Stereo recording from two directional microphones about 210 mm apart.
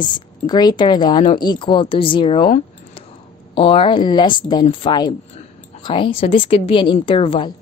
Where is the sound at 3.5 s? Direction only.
25° left (ahead or behind).